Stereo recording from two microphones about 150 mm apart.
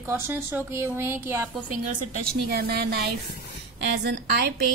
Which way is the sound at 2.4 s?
90° right.